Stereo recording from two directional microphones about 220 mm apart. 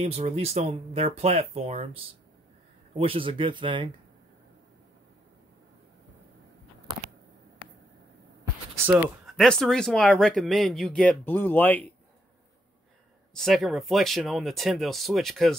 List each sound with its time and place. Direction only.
0.0 s speech: 30° right (ahead or behind)
3.0 s speech: 25° right (ahead or behind)
9.0 s speech: centre (ahead or behind)
13.3 s speech: centre (ahead or behind)